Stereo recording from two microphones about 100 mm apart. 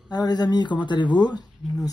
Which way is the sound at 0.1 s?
45° left (ahead or behind).